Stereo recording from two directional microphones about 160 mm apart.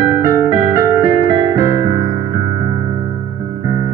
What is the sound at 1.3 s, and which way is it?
Keyboard, 25° right (ahead or behind).